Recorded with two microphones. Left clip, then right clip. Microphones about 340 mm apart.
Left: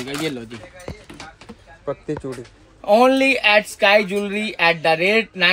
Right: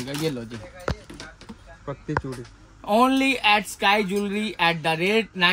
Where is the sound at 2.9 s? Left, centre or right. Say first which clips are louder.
Left 6 dB; centre.